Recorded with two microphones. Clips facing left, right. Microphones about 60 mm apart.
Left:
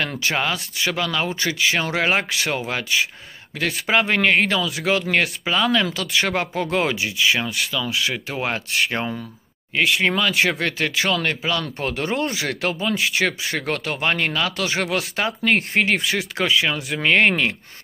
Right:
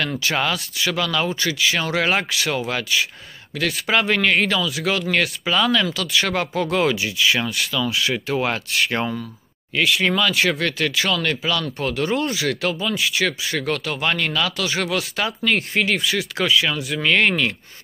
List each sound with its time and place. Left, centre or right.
0.3 s speech: centre
1.5 s speech: left
7.1 s speech: centre
8.3 s speech: centre
9.8 s speech: left
10.2 s speech: centre
11.1 s speech: left
16.3 s speech: left